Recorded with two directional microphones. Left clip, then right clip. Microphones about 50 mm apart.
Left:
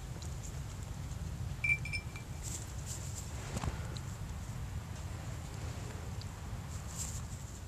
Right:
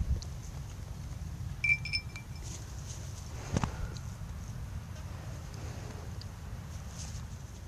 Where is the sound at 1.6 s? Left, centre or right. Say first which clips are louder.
Right 4 dB; right.